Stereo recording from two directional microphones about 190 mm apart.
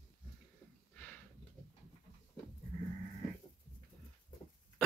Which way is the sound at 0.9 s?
10° left (ahead or behind).